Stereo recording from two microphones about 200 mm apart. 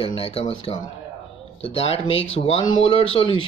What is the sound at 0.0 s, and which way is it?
Speech, 30° left (ahead or behind).